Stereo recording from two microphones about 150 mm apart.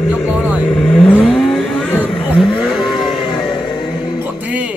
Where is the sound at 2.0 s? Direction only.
Centre (ahead or behind).